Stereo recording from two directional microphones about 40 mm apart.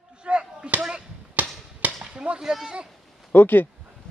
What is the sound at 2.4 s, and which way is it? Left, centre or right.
Speech, centre.